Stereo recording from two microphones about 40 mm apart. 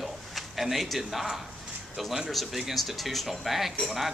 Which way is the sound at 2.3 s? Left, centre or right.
Centre.